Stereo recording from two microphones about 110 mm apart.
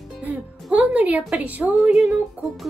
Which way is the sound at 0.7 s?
15° right (ahead or behind).